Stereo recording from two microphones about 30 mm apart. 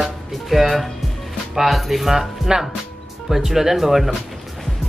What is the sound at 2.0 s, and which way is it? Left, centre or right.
Music, centre.